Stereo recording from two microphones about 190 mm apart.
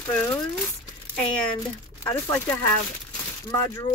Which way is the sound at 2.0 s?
15° left (ahead or behind).